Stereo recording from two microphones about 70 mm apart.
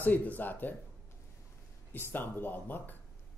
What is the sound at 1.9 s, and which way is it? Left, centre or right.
A man's voice, left.